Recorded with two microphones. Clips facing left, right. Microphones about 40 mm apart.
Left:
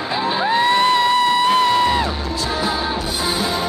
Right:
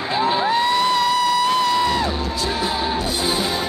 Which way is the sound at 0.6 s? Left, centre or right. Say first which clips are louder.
Left 3 dB; left.